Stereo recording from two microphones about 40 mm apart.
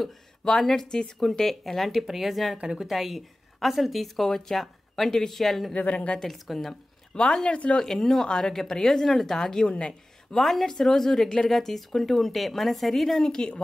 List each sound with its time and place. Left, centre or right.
0.7 s a woman's voice: centre
2.5 s a woman's voice: centre
2.9 s a woman's voice: centre
5.8 s a woman's voice: left
6.2 s a woman's voice: centre
7.4 s a woman's voice: left
7.7 s speech: centre
9.7 s a woman's voice: left
10.3 s a woman's voice: centre
13.2 s speech: centre